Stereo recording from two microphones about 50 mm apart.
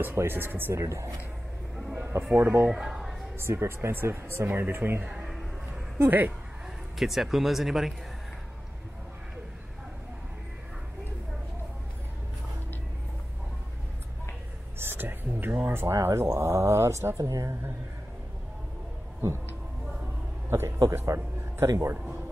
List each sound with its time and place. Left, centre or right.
0.3 s speech: right
0.7 s a man's voice: right
1.8 s a sound: centre
2.3 s speech: right
2.7 s a sound: centre
3.3 s speech: right
5.0 s a sound: centre
6.0 s speech: right
7.0 s speech: centre
14.8 s speech: right
20.4 s a man's voice: right